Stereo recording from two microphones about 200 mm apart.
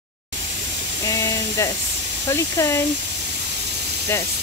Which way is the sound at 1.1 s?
15° left (ahead or behind).